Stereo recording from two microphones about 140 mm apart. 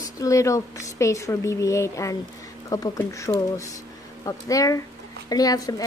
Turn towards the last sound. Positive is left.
turn(degrees=25)  # may be behind; listen again after turning